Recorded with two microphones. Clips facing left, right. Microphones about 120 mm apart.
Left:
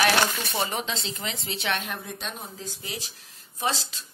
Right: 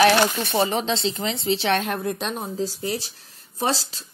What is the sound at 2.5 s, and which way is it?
Speech, 35° right (ahead or behind).